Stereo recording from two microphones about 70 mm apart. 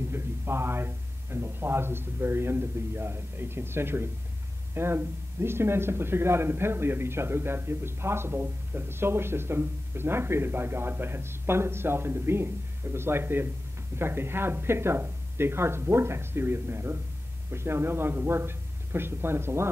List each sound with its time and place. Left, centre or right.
0.1 s speech: right